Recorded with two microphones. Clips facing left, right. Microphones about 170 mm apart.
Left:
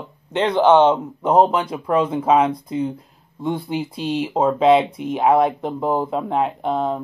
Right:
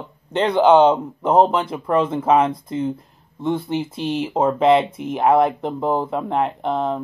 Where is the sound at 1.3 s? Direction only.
10° left (ahead or behind).